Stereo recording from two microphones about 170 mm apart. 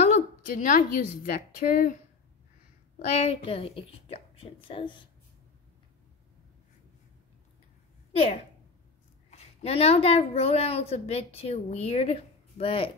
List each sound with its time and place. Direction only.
0.0 s a sound: 45° left (ahead or behind)
0.9 s speech: 60° left (ahead or behind)
3.2 s a woman's voice: 35° left (ahead or behind)
8.1 s a woman's voice: 35° left (ahead or behind)